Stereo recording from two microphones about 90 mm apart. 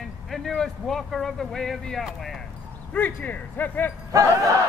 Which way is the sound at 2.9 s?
20° left (ahead or behind).